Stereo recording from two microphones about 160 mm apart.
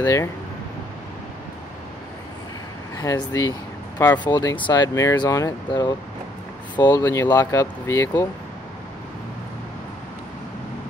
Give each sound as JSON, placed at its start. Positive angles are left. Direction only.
{"t": 0.0, "sound": "speech", "side_deg": 20}
{"t": 3.0, "sound": "speech", "side_deg": 20}